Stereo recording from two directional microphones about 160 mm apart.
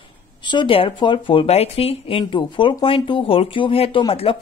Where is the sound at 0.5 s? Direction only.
30° left (ahead or behind).